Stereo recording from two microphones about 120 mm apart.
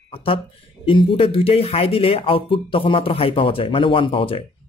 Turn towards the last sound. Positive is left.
turn(degrees=50)  # may be behind; listen again after turning